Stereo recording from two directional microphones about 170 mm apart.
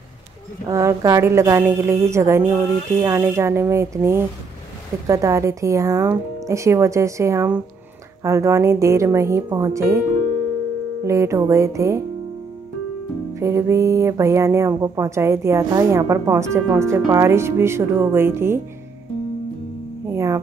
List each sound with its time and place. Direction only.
0.7 s speech: 20° right (ahead or behind)
11.1 s speech: 15° right (ahead or behind)
13.3 s speech: 15° right (ahead or behind)
20.1 s music: 15° right (ahead or behind)